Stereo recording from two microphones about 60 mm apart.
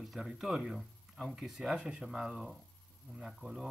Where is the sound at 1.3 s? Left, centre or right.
Centre.